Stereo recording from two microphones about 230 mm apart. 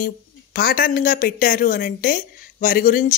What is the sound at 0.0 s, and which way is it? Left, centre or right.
Speech, left.